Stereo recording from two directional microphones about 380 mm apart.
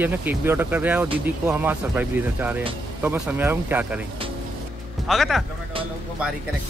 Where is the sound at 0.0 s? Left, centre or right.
Centre.